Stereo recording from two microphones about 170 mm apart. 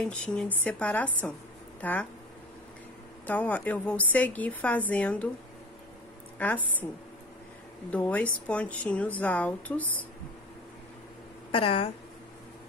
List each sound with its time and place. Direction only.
0.0 s a woman's voice: 5° left (ahead or behind)
3.3 s a woman's voice: 10° left (ahead or behind)
6.3 s a woman's voice: 10° left (ahead or behind)
7.9 s a woman's voice: 10° left (ahead or behind)
11.5 s speech: 30° left (ahead or behind)